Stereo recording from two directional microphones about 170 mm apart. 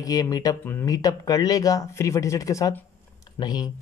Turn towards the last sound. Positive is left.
turn(degrees=25)  # may be behind; listen again after turning